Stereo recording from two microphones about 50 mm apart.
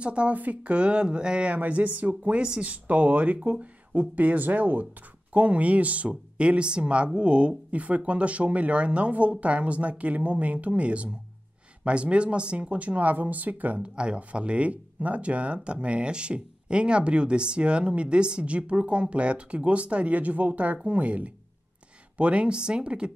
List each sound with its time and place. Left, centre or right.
0.0 s speech: right
1.6 s speech: right
13.8 s speech: centre